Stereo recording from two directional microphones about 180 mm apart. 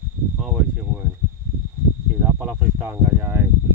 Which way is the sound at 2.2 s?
10° right (ahead or behind).